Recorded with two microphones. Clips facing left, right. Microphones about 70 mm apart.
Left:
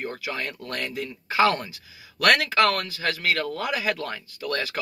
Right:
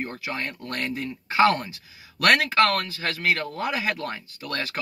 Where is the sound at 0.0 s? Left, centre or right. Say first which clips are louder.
Even; right.